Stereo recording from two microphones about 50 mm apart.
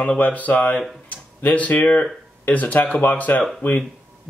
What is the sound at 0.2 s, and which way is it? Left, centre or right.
Speech, left.